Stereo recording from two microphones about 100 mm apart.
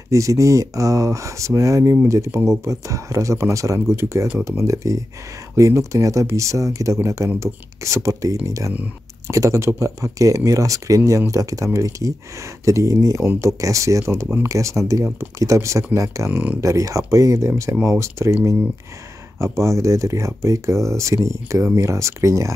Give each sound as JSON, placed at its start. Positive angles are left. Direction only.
{"t": 0.1, "sound": "speech", "side_deg": -35}
{"t": 16.3, "sound": "speech", "side_deg": -15}
{"t": 16.6, "sound": "speech", "side_deg": -35}